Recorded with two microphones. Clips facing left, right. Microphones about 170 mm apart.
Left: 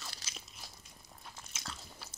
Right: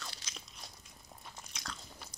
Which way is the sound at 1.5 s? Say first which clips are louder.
Right 1 dB; 5° left (ahead or behind).